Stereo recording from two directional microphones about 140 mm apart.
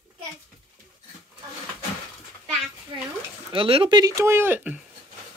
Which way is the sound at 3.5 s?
40° right (ahead or behind).